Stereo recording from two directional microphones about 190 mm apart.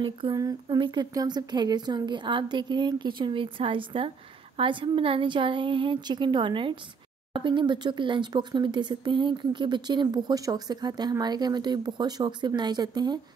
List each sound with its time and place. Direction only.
0.0 s speech: 25° right (ahead or behind)